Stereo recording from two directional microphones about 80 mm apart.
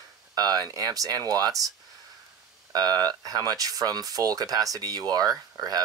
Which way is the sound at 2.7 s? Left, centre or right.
Right.